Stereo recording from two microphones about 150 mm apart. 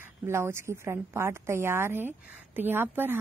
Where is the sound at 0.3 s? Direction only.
15° right (ahead or behind).